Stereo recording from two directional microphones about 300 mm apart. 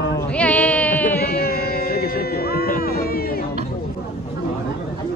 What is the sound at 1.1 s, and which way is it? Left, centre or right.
Music, left.